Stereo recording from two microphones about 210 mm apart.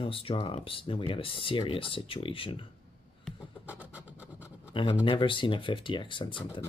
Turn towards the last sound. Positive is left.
turn(degrees=25)  # may be behind; listen again after turning